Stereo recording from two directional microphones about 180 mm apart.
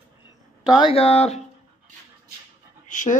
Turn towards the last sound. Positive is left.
turn(degrees=45)  # may be behind; listen again after turning